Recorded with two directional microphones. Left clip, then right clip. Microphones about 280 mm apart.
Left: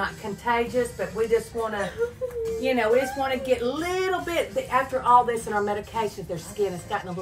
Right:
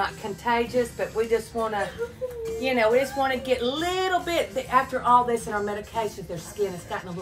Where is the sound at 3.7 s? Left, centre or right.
Centre.